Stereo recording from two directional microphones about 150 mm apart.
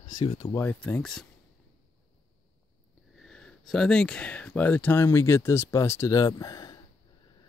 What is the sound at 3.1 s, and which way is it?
Speech, 5° left (ahead or behind).